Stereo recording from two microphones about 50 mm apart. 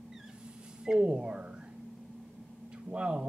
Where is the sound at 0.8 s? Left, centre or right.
Centre.